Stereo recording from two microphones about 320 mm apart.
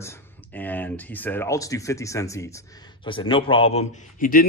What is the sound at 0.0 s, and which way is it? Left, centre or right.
A man's voice, centre.